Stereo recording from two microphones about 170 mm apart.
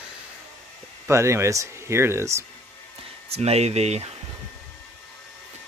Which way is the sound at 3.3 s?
40° right (ahead or behind).